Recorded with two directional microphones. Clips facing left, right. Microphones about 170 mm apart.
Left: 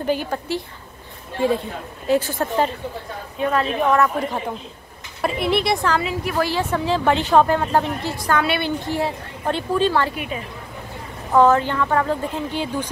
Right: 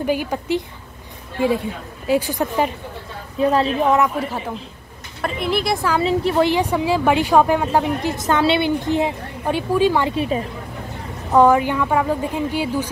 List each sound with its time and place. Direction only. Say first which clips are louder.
0.0 s a woman's voice: right 1 dB; 10° right (ahead or behind)
3.3 s a woman's voice: right 4 dB; 30° right (ahead or behind)
5.2 s speech: left 1 dB; centre (ahead or behind)
5.9 s a woman's voice: right 5 dB; 25° right (ahead or behind)
10.1 s a woman's voice: right 8 dB; 30° right (ahead or behind)
11.3 s a woman's voice: right 1 dB; 15° right (ahead or behind)